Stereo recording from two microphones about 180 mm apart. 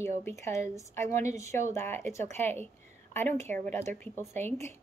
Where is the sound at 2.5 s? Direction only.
10° left (ahead or behind).